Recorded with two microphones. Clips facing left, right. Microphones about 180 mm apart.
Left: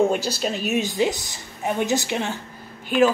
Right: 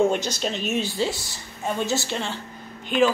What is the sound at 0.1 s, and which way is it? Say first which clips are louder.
Speech: left 2 dB; 5° left (ahead or behind).